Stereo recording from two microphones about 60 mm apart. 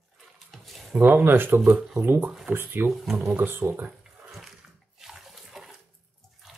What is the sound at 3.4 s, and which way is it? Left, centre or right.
Speech, right.